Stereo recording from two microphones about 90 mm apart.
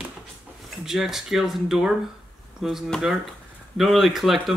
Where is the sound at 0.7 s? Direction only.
5° right (ahead or behind).